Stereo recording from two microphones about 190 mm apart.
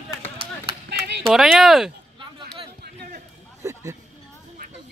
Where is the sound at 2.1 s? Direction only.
25° right (ahead or behind).